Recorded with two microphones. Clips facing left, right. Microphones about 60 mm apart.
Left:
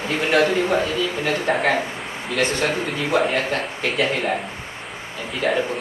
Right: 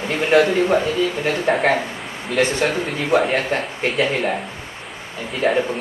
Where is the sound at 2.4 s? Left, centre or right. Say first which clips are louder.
Right 3 dB; right.